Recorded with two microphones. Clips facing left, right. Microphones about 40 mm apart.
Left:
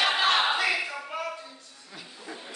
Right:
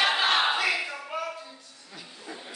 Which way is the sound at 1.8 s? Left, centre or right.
Centre.